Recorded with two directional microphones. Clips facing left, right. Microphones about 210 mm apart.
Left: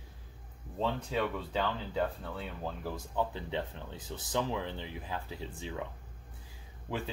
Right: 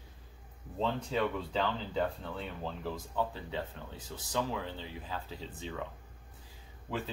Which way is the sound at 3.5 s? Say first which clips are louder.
Left 2 dB; 20° left (ahead or behind).